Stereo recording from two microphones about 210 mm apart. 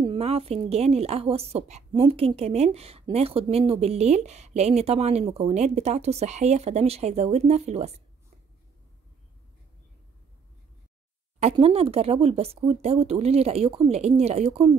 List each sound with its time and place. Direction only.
0.0 s a woman's voice: 25° right (ahead or behind)
11.3 s a woman's voice: 30° right (ahead or behind)